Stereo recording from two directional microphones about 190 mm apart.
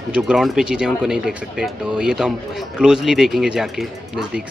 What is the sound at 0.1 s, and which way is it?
Speech, 5° right (ahead or behind).